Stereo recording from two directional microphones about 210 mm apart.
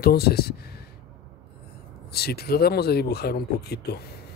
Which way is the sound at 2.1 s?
50° left (ahead or behind).